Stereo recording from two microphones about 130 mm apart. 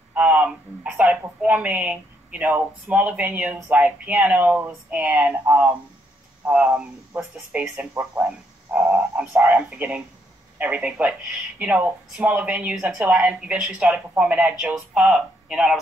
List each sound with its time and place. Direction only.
0.1 s speech: 10° right (ahead or behind)
7.9 s speech: 20° right (ahead or behind)